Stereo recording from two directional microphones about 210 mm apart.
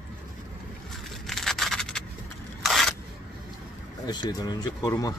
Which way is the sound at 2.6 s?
Centre (ahead or behind).